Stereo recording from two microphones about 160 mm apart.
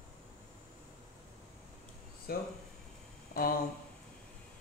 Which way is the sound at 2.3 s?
70° left (ahead or behind).